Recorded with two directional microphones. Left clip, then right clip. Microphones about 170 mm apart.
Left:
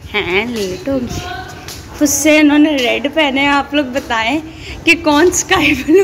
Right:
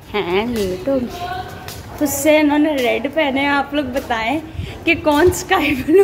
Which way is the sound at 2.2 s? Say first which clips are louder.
Left 3 dB; 5° right (ahead or behind).